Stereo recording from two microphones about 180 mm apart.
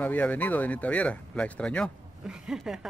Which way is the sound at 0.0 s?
10° left (ahead or behind).